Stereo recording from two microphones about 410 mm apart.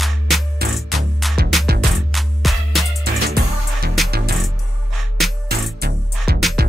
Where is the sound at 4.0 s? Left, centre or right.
Centre.